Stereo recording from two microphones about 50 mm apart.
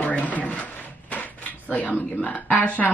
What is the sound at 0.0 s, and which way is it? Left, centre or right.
Drawer open or close, left.